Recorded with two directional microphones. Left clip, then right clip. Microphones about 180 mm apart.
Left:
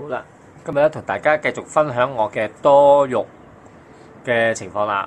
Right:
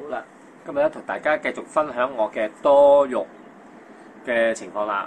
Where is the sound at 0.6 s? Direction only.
45° left (ahead or behind).